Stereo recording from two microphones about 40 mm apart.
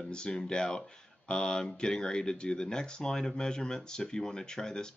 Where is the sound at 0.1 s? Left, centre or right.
Left.